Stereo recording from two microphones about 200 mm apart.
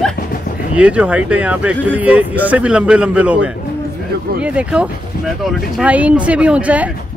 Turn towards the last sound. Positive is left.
turn(degrees=-5)  # may be behind; listen again after turning